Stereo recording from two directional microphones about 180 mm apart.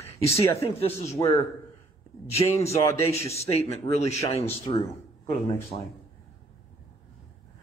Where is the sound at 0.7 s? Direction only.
35° left (ahead or behind).